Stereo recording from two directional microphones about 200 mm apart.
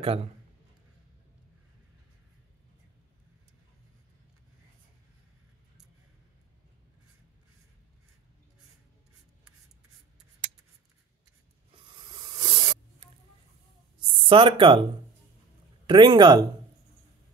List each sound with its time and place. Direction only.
0.0 s speech: 30° right (ahead or behind)
11.7 s a sound: 25° right (ahead or behind)
15.9 s speech: 20° right (ahead or behind)